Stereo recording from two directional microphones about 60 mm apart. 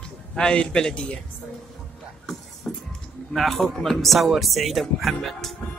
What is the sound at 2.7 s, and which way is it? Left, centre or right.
Music, centre.